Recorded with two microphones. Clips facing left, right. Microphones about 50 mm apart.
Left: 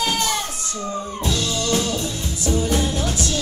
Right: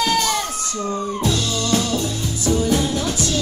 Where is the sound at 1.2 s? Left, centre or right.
Right.